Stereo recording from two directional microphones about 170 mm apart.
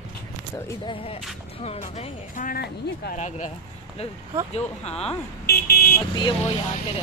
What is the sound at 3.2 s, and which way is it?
Speech, 45° left (ahead or behind).